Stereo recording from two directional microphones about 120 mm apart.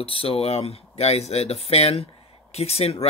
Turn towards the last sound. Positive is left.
turn(degrees=60)  # may be behind; listen again after turning